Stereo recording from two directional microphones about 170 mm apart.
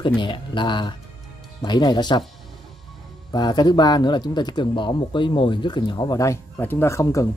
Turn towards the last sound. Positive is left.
turn(degrees=20)  # may be behind; listen again after turning